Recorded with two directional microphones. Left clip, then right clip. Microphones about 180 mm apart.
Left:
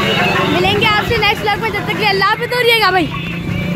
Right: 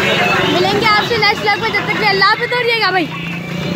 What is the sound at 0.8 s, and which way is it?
Speech, centre (ahead or behind).